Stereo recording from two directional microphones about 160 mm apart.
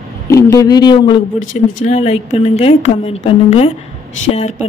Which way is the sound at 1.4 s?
50° left (ahead or behind).